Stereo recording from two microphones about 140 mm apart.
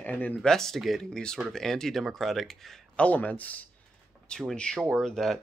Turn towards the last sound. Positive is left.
turn(degrees=5)  # may be behind; listen again after turning